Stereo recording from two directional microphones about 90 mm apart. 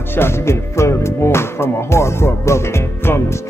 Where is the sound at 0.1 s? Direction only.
25° left (ahead or behind).